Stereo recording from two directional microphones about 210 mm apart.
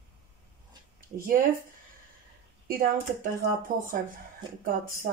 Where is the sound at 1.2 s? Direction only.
40° right (ahead or behind).